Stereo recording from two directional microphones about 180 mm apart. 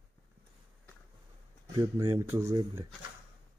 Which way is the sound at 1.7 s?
20° right (ahead or behind).